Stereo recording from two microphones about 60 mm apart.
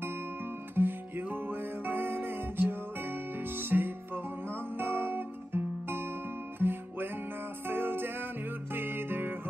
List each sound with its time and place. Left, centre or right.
0.7 s music: right
4.7 s guitar: right
6.6 s music: right